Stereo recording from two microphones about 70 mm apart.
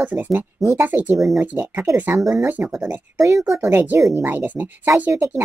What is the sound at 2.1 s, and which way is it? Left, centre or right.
Speech, right.